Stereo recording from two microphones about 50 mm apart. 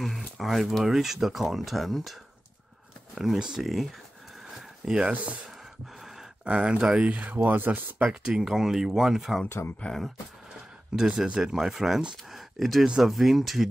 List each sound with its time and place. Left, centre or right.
0.4 s speech: centre
3.3 s speech: centre
3.6 s speech: centre
4.5 s a sound: centre
5.1 s speech: right
6.4 s speech: right
7.4 s speech: right
8.1 s speech: centre
9.5 s speech: left
11.0 s speech: centre